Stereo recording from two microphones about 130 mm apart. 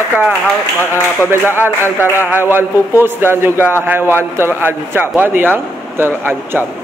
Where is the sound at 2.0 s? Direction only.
20° left (ahead or behind).